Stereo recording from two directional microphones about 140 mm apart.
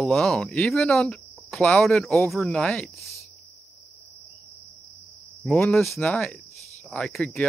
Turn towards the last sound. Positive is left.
turn(degrees=5)  # may be behind; listen again after turning